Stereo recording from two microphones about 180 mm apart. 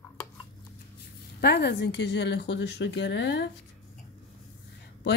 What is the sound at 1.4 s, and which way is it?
Speech, 65° left (ahead or behind).